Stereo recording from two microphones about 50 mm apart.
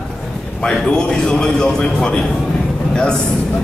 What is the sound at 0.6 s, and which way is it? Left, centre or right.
Speech, centre.